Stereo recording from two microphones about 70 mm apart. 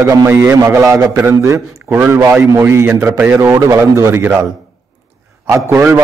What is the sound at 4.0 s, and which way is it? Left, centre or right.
Speech, right.